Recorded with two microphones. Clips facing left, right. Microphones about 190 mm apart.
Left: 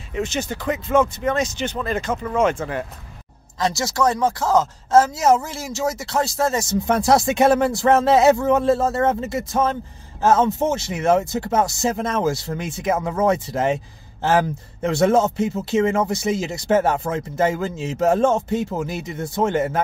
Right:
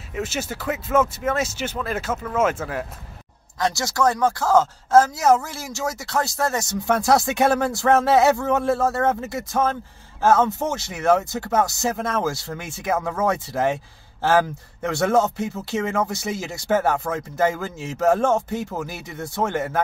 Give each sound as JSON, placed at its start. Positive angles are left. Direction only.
{"t": 0.1, "sound": "speech", "side_deg": -5}
{"t": 3.7, "sound": "speech", "side_deg": 20}